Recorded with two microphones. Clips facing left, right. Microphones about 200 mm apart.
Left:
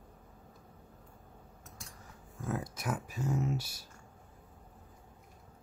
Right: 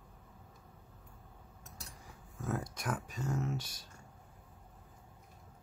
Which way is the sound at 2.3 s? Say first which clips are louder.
Left 1 dB; centre (ahead or behind).